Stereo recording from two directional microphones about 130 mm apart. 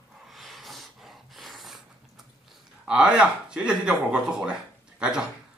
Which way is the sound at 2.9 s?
5° right (ahead or behind).